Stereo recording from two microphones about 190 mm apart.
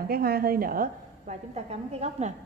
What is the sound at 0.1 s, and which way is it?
A woman's voice, 50° right (ahead or behind).